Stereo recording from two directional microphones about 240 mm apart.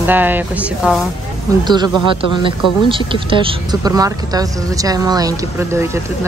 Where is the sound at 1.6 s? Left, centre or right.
Centre.